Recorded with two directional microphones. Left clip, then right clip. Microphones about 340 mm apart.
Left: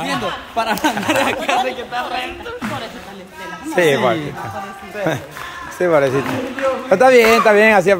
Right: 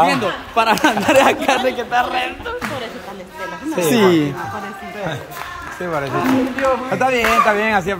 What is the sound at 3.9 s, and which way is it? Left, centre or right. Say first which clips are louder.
Speech: right 4 dB; right.